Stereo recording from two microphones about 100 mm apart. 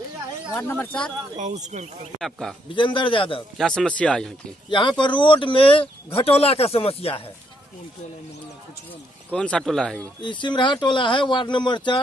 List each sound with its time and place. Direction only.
0.5 s speech: 25° left (ahead or behind)
2.1 s speech: 5° left (ahead or behind)
2.7 s a man's voice: 55° left (ahead or behind)
3.5 s speech: 5° left (ahead or behind)
4.6 s speech: 55° left (ahead or behind); by 7.2 s 70° left (ahead or behind)
9.3 s speech: 10° left (ahead or behind)
10.2 s speech: 50° left (ahead or behind)